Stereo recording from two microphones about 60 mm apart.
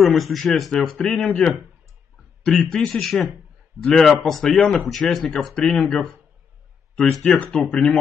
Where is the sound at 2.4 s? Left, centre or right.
Centre.